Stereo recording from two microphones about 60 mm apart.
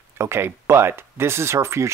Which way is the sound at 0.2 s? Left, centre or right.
Right.